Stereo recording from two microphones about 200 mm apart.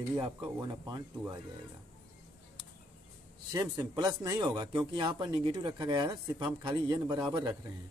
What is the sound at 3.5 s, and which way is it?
Speech, 20° right (ahead or behind).